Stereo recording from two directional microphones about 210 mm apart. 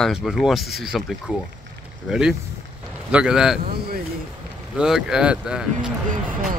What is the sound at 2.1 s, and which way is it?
Speech, centre (ahead or behind).